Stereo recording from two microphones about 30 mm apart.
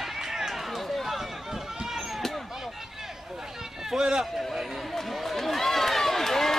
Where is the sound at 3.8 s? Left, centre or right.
Right.